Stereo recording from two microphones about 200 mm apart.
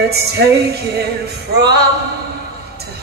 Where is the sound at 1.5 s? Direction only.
55° right (ahead or behind).